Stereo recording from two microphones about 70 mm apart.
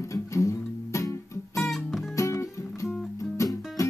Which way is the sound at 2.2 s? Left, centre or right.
Left.